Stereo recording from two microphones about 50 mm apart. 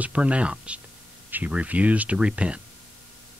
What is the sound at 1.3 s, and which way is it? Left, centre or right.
Speech, right.